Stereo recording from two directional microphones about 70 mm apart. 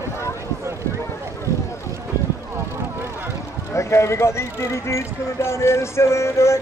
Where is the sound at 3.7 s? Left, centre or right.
Left.